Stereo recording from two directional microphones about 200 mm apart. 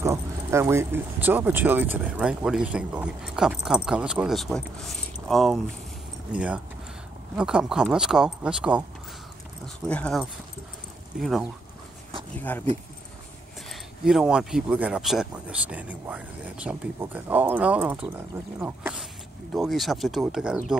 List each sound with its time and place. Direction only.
0.0 s speech: 15° right (ahead or behind)
9.8 s speech: 5° left (ahead or behind)
13.7 s speech: centre (ahead or behind)